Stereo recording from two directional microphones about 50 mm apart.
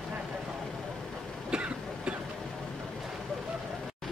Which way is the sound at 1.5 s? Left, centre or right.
Right.